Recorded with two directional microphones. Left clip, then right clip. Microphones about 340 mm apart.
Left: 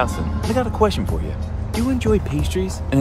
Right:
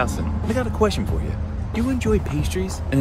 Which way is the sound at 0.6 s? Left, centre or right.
Centre.